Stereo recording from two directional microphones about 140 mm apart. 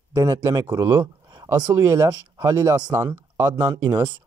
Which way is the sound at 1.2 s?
25° right (ahead or behind).